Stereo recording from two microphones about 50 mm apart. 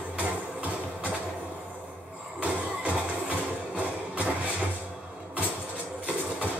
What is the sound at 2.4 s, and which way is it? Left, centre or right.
Music, right.